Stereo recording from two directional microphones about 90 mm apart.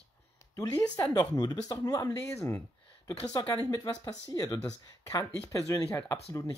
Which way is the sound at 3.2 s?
45° left (ahead or behind).